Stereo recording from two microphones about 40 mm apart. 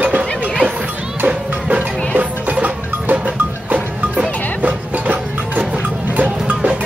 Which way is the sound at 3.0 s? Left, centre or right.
Right.